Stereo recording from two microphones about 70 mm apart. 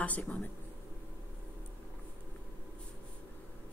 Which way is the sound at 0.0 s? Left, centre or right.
Left.